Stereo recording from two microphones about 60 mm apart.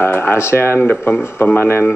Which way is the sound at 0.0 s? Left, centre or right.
Left.